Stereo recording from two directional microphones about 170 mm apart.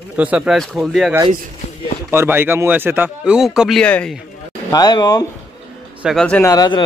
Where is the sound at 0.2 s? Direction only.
5° right (ahead or behind).